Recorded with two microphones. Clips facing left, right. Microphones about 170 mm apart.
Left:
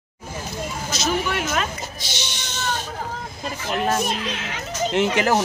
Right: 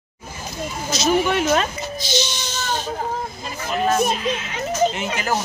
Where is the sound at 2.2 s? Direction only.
65° left (ahead or behind).